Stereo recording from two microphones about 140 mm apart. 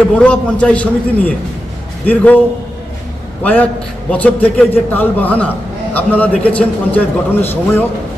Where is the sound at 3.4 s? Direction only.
10° left (ahead or behind).